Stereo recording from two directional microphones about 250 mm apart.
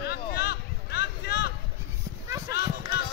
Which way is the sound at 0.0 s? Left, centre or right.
Left.